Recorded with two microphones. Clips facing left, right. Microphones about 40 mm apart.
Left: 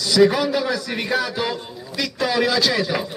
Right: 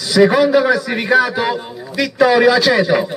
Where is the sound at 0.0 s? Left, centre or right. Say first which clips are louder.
Right 5 dB; right.